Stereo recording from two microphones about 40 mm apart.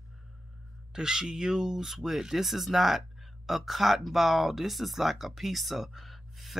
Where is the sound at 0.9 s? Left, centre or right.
Centre.